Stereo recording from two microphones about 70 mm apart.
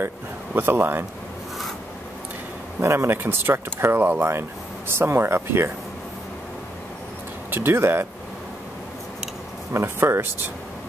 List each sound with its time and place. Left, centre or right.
0.6 s speech: right
2.8 s speech: right
7.5 s speech: right
9.7 s speech: right